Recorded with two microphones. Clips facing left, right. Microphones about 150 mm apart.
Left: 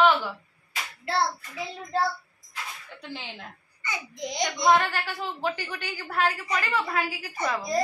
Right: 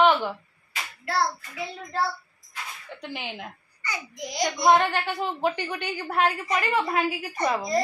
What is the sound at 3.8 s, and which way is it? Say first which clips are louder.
Speech: even; 25° left (ahead or behind).